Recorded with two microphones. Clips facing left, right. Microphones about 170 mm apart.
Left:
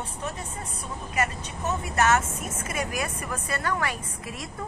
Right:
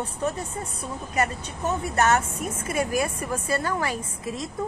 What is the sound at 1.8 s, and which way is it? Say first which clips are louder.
A woman's voice: right 1 dB; 35° right (ahead or behind).